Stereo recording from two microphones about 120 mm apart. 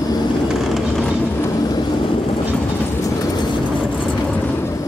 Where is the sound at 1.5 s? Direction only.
35° left (ahead or behind).